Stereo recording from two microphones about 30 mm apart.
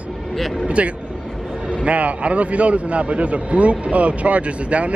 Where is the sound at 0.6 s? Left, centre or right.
Right.